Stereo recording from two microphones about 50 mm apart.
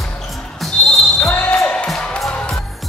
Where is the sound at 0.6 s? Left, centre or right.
Centre.